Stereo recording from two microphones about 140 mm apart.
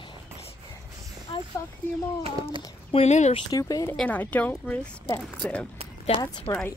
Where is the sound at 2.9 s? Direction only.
50° left (ahead or behind).